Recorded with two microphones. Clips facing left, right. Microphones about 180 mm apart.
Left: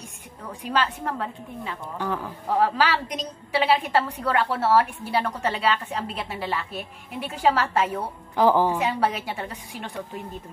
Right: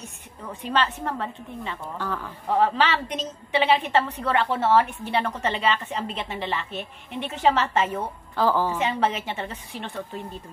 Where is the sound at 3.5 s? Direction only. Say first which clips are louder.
Even; 10° left (ahead or behind).